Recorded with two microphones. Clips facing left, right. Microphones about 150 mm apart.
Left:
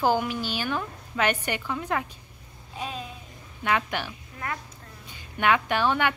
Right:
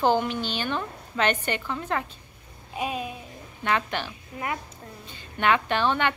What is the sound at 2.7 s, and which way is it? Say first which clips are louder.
Speech: right 5 dB; 15° right (ahead or behind).